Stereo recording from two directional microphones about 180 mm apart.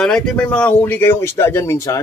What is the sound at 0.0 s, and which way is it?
Speech, 5° left (ahead or behind).